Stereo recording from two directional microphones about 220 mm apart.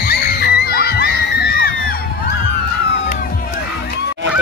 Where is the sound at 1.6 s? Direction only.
45° left (ahead or behind).